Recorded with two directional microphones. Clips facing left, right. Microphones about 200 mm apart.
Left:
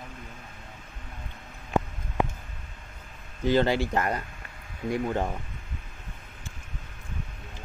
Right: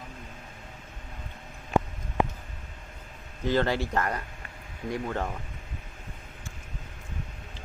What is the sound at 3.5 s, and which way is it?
Speech, 25° left (ahead or behind).